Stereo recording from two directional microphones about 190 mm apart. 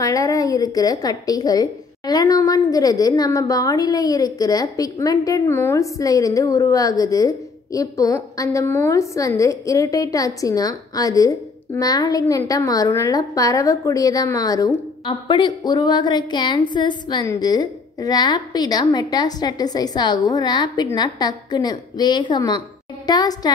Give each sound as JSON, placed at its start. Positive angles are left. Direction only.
{"t": 0.0, "sound": "a woman's voice", "side_deg": 15}